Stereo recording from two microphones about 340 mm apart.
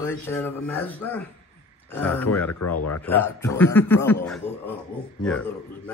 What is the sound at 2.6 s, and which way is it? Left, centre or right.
Speech, left.